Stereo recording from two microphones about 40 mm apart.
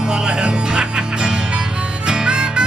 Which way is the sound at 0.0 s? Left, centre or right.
Centre.